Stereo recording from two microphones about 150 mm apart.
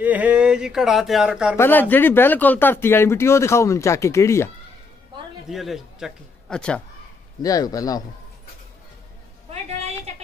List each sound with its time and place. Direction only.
0.0 s speech: 10° right (ahead or behind)
1.6 s speech: 10° left (ahead or behind)
5.5 s speech: centre (ahead or behind)
7.4 s speech: 25° left (ahead or behind)
9.5 s a sound: 45° right (ahead or behind)